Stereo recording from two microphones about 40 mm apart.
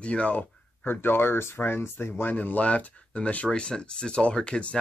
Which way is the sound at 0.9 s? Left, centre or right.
Left.